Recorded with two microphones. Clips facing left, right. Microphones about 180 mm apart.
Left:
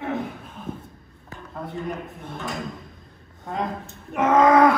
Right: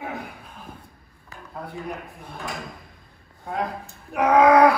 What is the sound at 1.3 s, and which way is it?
Dishes, centre (ahead or behind).